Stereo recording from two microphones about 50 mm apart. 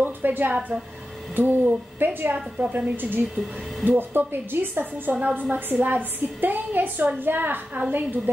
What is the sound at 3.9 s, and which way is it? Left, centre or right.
A woman's voice, right.